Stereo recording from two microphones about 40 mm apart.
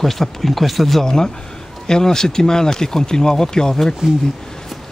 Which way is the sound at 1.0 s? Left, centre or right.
Centre.